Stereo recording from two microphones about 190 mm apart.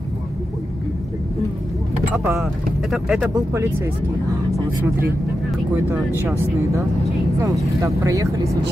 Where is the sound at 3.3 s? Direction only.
15° right (ahead or behind).